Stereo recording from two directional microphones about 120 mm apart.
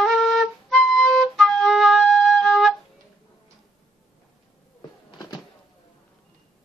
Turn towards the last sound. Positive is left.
turn(degrees=35)  # may be behind; listen again after turning